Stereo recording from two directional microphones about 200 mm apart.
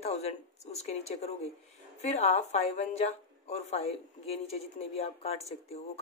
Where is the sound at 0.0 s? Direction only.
30° left (ahead or behind).